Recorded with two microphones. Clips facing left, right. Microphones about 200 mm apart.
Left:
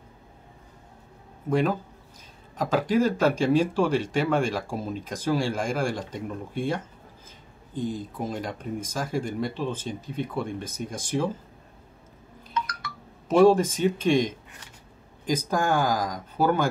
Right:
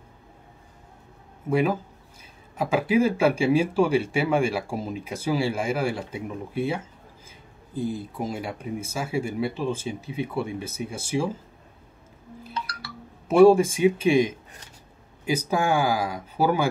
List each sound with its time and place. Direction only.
1.5 s speech: 10° right (ahead or behind)
12.5 s a sound: 35° right (ahead or behind)
13.3 s speech: 10° right (ahead or behind)